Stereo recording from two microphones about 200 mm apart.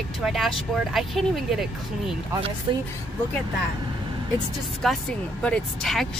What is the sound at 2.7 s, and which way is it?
Speech, 25° right (ahead or behind).